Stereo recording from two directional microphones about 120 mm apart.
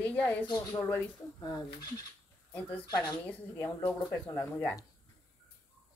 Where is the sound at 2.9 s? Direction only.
35° left (ahead or behind).